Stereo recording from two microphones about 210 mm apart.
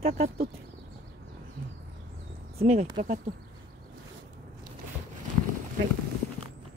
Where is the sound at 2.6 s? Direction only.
30° right (ahead or behind).